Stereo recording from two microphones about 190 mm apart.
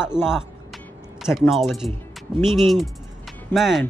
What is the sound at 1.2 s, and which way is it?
Speech, centre (ahead or behind).